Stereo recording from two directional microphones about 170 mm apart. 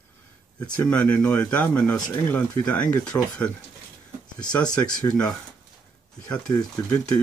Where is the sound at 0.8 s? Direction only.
10° left (ahead or behind).